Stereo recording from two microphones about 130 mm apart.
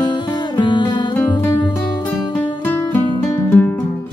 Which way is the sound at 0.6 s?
35° left (ahead or behind).